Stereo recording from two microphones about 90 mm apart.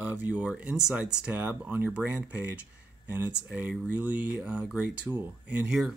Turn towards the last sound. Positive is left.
turn(degrees=-5)  # may be behind; listen again after turning